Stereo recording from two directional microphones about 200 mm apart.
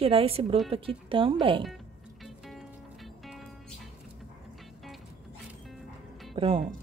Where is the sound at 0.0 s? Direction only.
30° right (ahead or behind).